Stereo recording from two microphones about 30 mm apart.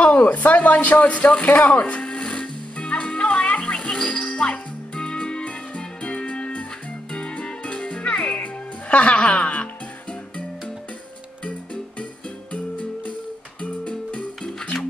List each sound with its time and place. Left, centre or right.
0.0 s a sound: left
1.0 s speech: left
2.0 s music: left
8.4 s music: left
11.4 s music: left
13.6 s music: left